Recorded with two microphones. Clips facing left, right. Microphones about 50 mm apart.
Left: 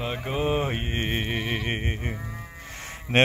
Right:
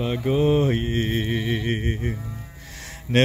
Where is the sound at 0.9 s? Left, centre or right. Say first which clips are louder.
Right 4 dB; left.